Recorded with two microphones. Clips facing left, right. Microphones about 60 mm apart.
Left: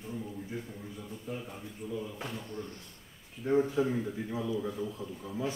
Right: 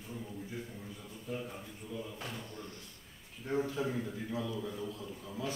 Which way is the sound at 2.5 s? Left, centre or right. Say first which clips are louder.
Left 6 dB; left.